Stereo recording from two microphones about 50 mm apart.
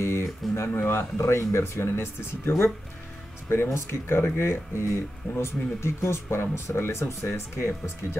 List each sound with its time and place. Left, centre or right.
0.0 s speech: left